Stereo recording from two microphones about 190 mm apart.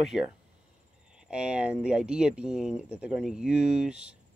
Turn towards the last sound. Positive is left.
turn(degrees=-5)  # may be behind; listen again after turning